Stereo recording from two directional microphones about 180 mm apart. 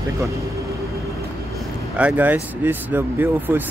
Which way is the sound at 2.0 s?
10° right (ahead or behind).